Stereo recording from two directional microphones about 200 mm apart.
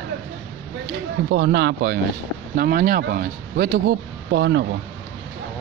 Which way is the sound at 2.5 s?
50° right (ahead or behind).